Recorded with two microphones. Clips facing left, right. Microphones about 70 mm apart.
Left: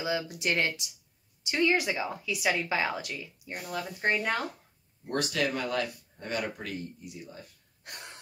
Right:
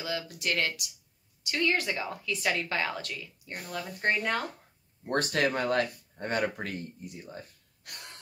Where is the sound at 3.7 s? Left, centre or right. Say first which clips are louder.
Even; centre.